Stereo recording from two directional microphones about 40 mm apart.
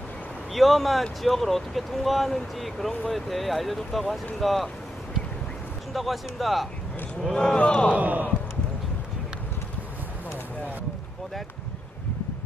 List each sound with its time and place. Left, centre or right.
0.5 s speech: centre
5.9 s speech: centre
7.5 s a man's voice: left
7.9 s a man's voice: right